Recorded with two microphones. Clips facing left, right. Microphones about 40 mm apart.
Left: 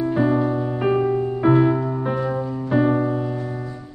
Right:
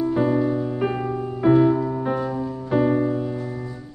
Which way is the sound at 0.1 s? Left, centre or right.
Centre.